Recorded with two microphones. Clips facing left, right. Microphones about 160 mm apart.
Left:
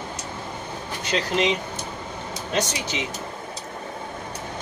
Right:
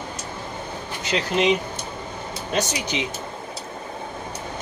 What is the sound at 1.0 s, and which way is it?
Speech, centre (ahead or behind).